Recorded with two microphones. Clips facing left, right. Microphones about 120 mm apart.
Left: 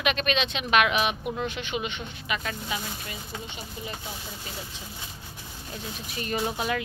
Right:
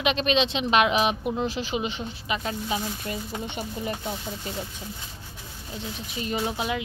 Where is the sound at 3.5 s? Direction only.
60° right (ahead or behind).